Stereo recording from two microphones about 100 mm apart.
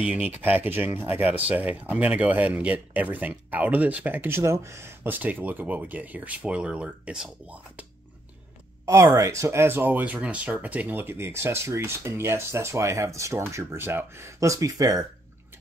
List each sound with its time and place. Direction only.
0.0 s speech: 15° right (ahead or behind)
8.8 s speech: 30° right (ahead or behind)